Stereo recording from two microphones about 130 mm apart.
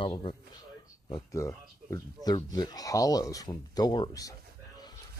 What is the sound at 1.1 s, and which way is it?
Speech, 25° left (ahead or behind).